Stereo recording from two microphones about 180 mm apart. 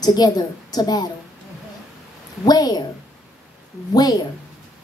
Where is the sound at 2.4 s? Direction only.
20° left (ahead or behind).